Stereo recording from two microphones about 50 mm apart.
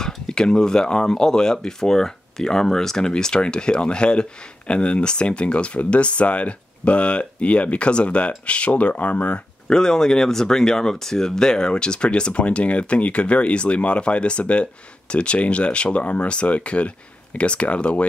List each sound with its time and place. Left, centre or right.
0.0 s speech: centre
9.7 s speech: centre